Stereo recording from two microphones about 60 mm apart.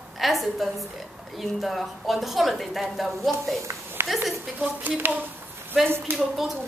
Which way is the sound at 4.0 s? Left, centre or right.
Right.